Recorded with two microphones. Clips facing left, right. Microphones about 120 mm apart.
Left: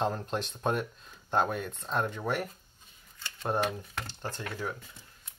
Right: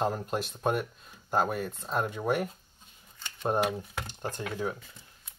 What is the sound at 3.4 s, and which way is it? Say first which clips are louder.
Speech: right 2 dB; 15° right (ahead or behind).